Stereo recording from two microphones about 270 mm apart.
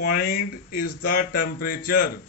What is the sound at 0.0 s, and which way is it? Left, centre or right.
Speech, left.